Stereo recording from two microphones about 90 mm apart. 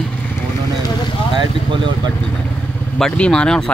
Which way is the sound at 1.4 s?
60° right (ahead or behind).